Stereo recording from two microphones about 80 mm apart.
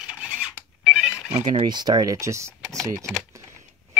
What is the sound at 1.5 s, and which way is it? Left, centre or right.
Speech, right.